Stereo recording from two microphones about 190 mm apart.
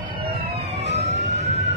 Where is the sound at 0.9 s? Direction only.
35° right (ahead or behind).